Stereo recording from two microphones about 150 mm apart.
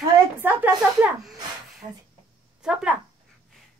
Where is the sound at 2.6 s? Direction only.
5° right (ahead or behind).